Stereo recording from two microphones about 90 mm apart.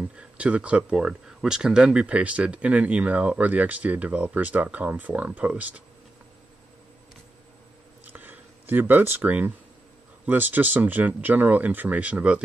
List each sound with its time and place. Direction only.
0.0 s speech: 15° right (ahead or behind)
8.0 s a sound: 20° right (ahead or behind)
10.2 s speech: 20° right (ahead or behind)